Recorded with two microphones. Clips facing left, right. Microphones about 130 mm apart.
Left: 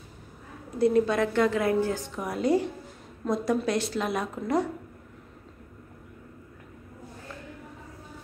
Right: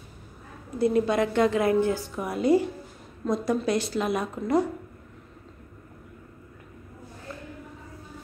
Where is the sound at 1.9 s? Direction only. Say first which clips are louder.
Right 2 dB; 5° right (ahead or behind).